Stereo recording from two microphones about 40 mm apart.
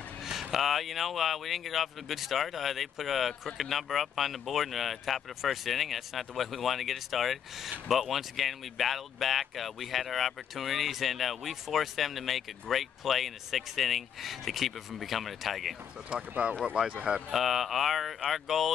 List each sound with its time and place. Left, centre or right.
0.2 s speech: centre
16.2 s speech: right
17.3 s speech: centre